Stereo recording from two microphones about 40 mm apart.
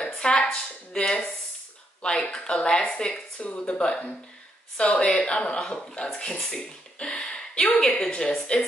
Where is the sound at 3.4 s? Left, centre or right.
Left.